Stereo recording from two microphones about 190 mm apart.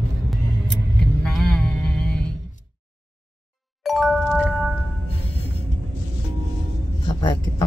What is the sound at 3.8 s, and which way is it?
Music, centre (ahead or behind).